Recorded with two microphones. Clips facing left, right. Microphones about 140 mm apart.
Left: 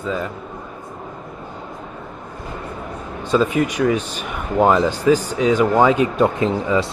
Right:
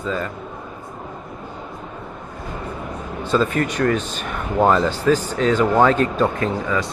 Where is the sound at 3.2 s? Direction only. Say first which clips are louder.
Left 2 dB; 10° left (ahead or behind).